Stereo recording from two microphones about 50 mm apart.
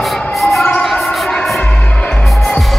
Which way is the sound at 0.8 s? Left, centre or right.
Centre.